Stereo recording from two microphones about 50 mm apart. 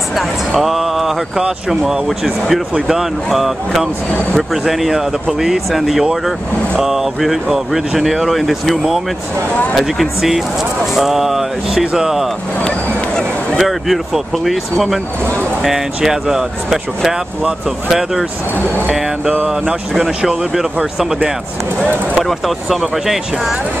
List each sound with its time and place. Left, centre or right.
0.1 s speech: centre
4.1 s speech: centre
4.6 s speech: centre
12.6 s a sound: centre
13.6 s speech: centre
20.0 s speech: centre
22.7 s speech: centre